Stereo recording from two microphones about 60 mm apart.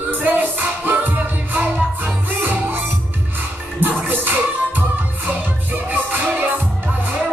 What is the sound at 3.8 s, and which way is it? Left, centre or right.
Music, right.